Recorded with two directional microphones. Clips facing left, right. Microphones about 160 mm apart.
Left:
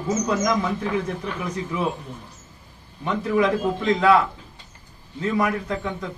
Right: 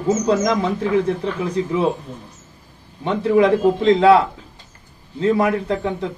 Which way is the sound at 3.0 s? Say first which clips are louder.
Right 6 dB; 30° right (ahead or behind).